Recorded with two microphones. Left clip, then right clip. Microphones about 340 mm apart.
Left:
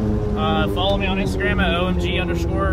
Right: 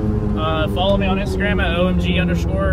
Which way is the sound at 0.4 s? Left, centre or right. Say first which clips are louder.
Right 1 dB; centre.